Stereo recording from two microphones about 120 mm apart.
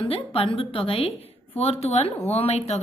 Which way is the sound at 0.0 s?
50° left (ahead or behind).